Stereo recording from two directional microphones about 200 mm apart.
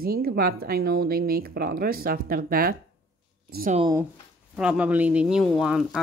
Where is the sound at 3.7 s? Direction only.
20° right (ahead or behind).